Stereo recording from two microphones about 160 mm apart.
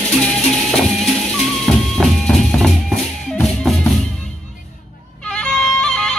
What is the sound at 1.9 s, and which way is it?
Music, centre (ahead or behind).